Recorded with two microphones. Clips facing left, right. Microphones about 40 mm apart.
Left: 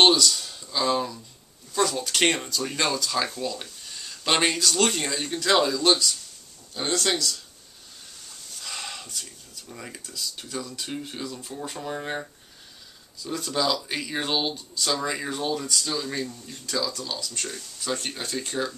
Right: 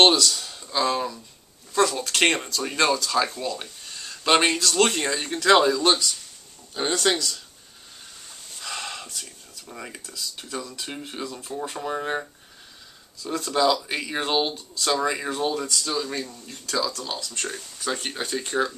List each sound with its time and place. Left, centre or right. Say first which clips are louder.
0.0 s speech: right 1 dB; centre
3.9 s a sound: right 4 dB; centre
4.6 s speech: right 2 dB; centre
8.6 s a sound: right 3 dB; centre
9.8 s speech: right 1 dB; centre
10.9 s speech: even; right
13.3 s speech: right 4 dB; centre